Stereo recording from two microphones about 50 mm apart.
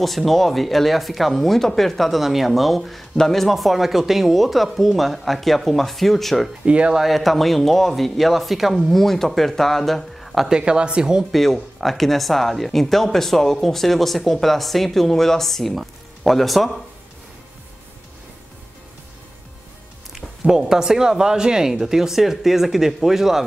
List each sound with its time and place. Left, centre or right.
0.0 s speech: centre
6.6 s speech: right
7.0 s speech: centre
10.5 s speech: centre
11.3 s speech: centre
20.4 s speech: centre